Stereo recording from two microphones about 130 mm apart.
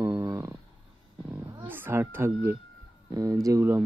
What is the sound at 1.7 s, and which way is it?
Speech, 15° right (ahead or behind).